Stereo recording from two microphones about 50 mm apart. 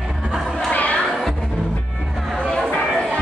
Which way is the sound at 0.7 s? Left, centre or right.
Left.